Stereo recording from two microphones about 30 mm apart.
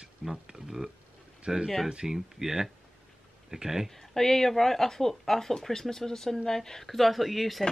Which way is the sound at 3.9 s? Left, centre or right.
Centre.